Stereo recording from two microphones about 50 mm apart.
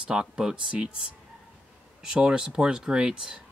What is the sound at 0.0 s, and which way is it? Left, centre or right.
Speech, centre.